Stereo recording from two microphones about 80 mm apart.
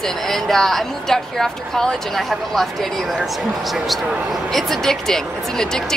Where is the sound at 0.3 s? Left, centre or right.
Centre.